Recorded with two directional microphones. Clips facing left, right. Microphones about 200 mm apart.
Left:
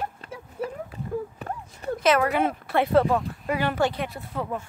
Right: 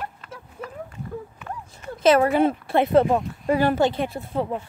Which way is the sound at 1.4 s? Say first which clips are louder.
Left 1 dB; 35° left (ahead or behind).